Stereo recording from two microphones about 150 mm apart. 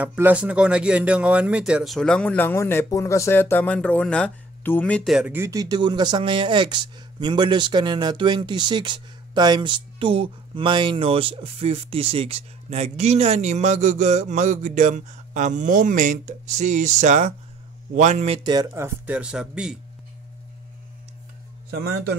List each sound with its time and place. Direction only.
0.0 s a man's voice: 10° right (ahead or behind); by 5.1 s 10° left (ahead or behind)
5.1 s speech: 10° right (ahead or behind); by 18.4 s 50° right (ahead or behind)
18.4 s speech: 25° right (ahead or behind); by 19.8 s 5° right (ahead or behind)